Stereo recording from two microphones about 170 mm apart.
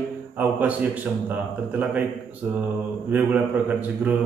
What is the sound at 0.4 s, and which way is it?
Speech, 10° right (ahead or behind).